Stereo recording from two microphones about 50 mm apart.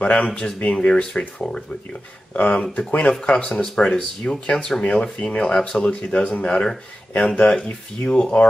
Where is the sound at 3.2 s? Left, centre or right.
Centre.